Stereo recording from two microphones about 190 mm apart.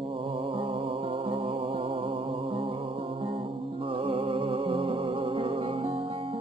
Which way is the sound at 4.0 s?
30° right (ahead or behind).